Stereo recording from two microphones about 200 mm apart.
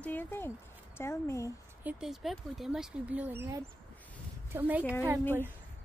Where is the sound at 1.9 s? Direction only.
5° right (ahead or behind).